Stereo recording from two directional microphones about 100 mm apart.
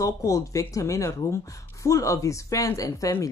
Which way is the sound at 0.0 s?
35° left (ahead or behind).